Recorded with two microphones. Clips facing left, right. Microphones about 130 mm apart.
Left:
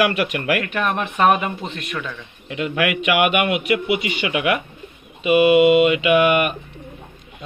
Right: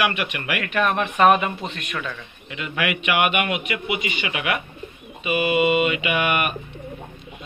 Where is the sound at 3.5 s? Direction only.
75° left (ahead or behind).